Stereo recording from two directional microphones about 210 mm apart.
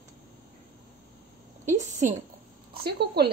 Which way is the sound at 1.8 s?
35° right (ahead or behind).